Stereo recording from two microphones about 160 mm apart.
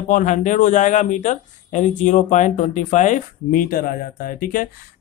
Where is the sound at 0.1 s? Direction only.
50° left (ahead or behind).